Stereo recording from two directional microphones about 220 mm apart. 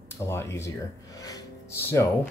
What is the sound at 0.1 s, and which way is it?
Speech, 10° left (ahead or behind).